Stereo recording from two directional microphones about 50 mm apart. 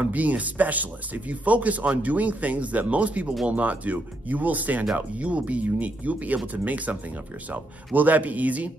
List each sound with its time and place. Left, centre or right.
0.0 s speech: right